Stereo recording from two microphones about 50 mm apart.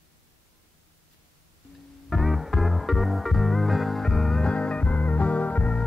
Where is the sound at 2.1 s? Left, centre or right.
Centre; by 5.7 s left.